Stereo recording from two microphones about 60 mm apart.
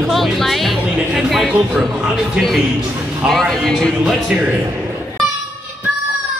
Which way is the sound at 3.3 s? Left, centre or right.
Centre.